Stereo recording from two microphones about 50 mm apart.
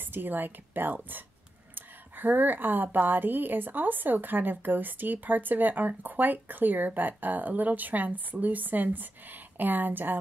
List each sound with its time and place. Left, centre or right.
0.0 s a woman's voice: right